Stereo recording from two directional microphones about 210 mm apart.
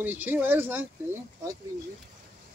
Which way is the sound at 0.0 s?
10° right (ahead or behind).